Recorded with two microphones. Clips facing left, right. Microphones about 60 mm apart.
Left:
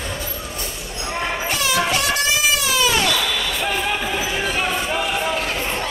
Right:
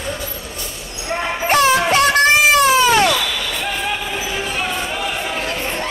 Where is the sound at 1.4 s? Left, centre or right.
Right.